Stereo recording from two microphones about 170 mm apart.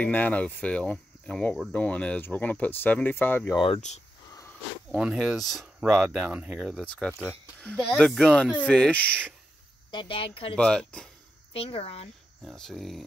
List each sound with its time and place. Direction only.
0.0 s speech: 10° left (ahead or behind)
3.5 s speech: 35° left (ahead or behind)
4.9 s speech: 5° right (ahead or behind)
9.8 s speech: 30° left (ahead or behind)
10.5 s speech: 5° left (ahead or behind)
11.5 s speech: 35° left (ahead or behind)
12.4 s speech: centre (ahead or behind)